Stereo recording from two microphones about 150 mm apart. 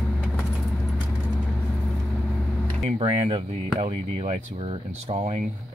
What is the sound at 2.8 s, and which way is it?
Speech, 40° right (ahead or behind).